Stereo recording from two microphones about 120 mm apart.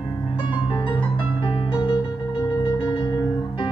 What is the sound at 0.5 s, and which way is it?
Music, 40° left (ahead or behind).